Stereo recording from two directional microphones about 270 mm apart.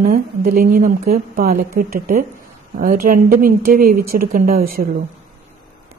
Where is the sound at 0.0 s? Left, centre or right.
Right.